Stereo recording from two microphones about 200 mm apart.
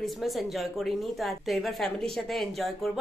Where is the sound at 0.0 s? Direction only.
Centre (ahead or behind).